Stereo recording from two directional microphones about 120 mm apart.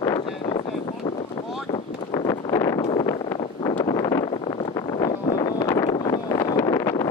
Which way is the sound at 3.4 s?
50° left (ahead or behind).